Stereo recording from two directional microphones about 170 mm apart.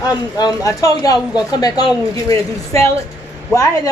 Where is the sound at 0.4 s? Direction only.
20° left (ahead or behind).